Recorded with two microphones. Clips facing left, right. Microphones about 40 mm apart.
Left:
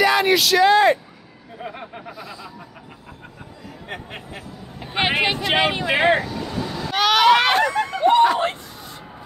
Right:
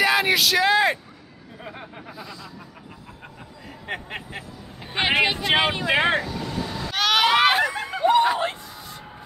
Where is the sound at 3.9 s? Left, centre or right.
Right.